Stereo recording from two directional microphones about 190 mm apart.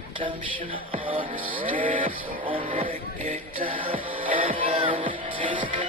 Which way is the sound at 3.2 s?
40° right (ahead or behind).